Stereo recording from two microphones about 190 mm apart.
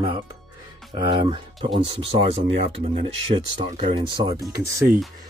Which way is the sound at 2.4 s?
40° right (ahead or behind).